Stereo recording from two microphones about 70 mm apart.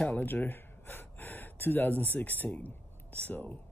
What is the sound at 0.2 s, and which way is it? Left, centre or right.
Speech, left.